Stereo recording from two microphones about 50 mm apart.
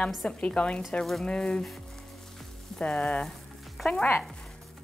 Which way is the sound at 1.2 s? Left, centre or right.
Centre.